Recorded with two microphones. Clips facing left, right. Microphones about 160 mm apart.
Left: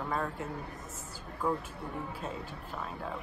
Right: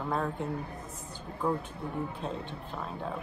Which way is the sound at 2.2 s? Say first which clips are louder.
Right 3 dB; 5° left (ahead or behind).